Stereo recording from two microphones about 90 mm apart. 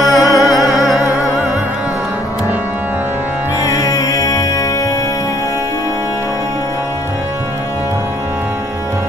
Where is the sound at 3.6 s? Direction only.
40° left (ahead or behind).